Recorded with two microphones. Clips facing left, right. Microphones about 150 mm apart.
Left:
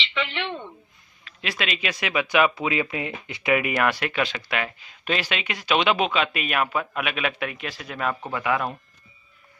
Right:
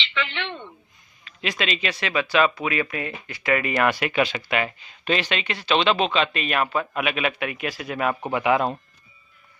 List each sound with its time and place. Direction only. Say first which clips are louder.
0.1 s a woman's voice: left 1 dB; 5° left (ahead or behind)
3.7 s speech: right 2 dB; centre (ahead or behind); by 8.7 s 25° right (ahead or behind)